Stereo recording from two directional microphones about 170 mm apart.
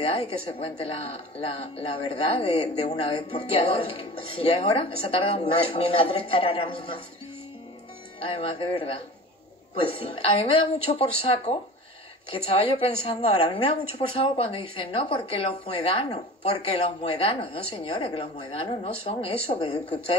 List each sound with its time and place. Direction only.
0.0 s a woman's voice: 30° left (ahead or behind)
8.2 s a woman's voice: 30° left (ahead or behind)